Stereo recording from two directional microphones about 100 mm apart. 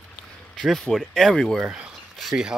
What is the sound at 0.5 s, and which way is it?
Speech, 5° left (ahead or behind).